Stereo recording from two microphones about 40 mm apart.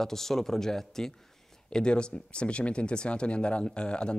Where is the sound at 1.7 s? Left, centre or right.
Left.